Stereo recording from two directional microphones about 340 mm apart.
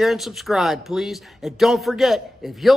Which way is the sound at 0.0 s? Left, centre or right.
Centre.